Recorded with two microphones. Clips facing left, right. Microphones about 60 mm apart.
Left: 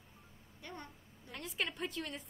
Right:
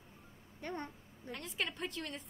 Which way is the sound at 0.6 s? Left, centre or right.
Right.